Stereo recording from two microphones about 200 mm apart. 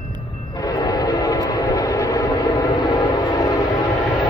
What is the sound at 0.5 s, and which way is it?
Train, 20° left (ahead or behind).